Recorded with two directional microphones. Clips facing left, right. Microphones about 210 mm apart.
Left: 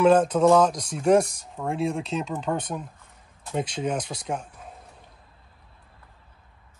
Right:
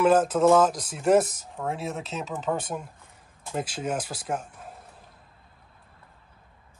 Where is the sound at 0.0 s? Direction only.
5° right (ahead or behind).